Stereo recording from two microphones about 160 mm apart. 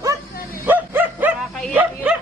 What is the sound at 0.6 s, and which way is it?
Bow-wow, 10° right (ahead or behind).